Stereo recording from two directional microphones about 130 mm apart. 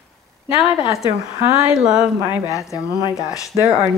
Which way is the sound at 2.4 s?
25° left (ahead or behind).